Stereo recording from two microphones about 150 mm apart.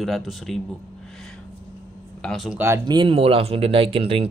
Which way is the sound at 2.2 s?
Centre (ahead or behind).